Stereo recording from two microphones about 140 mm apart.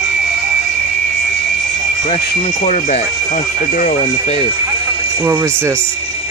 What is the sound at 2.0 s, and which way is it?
Speech, 45° left (ahead or behind).